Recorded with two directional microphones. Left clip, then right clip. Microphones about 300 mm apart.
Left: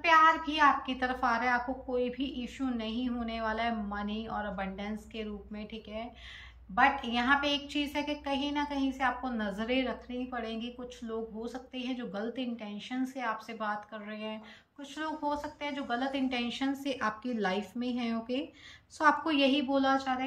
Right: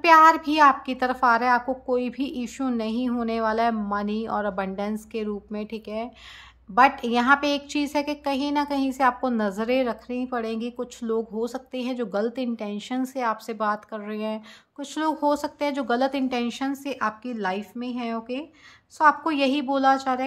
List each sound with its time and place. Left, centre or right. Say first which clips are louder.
0.0 s a woman's voice: right 9 dB; centre